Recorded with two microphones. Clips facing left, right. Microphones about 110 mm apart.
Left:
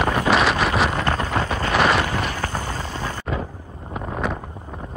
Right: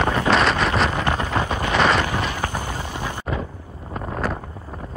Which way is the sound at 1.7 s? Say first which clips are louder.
Even; centre (ahead or behind).